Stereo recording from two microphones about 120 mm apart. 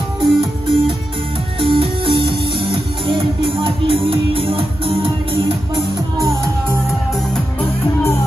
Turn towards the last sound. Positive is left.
turn(degrees=-25)  # may be behind; listen again after turning